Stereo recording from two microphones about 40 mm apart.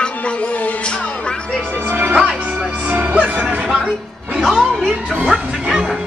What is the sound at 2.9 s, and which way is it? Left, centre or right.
Music, right.